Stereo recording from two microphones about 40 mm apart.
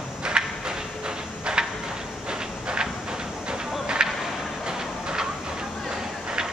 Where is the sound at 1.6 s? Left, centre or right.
Centre.